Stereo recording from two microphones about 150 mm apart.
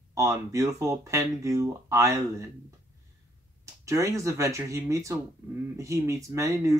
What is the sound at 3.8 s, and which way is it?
Speech, 20° right (ahead or behind).